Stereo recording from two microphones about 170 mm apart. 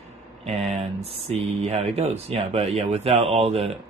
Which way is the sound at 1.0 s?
35° right (ahead or behind).